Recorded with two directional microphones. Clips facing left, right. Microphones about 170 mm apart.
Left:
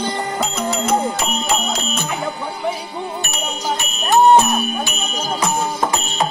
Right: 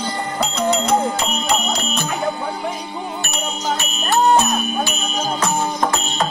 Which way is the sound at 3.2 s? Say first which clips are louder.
Even; 20° left (ahead or behind).